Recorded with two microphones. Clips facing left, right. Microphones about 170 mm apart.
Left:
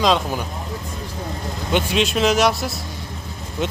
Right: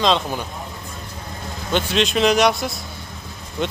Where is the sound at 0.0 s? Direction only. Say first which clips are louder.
Left 1 dB; 5° left (ahead or behind).